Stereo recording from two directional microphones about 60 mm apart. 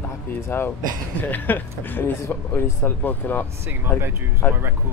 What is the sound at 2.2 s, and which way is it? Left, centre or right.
Speech, left.